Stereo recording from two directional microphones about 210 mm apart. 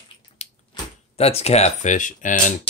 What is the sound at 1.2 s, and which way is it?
Speech, 30° left (ahead or behind).